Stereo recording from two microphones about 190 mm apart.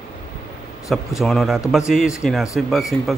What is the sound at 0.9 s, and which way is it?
Speech, centre (ahead or behind).